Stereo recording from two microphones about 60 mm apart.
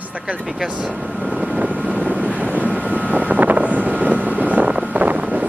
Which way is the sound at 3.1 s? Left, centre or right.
Right.